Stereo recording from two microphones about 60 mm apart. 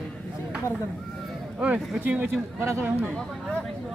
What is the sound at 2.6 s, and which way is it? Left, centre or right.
Speech, right.